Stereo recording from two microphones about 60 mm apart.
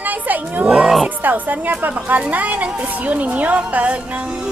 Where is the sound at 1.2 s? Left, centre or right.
Right.